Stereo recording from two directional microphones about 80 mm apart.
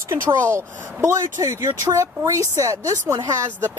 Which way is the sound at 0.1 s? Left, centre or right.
Right.